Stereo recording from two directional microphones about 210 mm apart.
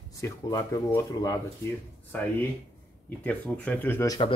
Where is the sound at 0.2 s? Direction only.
15° left (ahead or behind).